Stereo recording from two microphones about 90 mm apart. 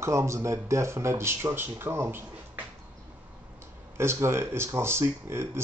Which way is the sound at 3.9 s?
30° right (ahead or behind).